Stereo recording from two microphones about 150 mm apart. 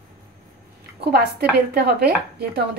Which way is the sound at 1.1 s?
90° right.